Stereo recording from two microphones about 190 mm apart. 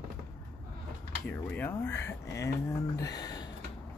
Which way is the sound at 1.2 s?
10° left (ahead or behind).